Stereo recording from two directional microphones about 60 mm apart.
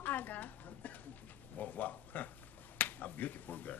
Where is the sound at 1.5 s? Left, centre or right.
Left.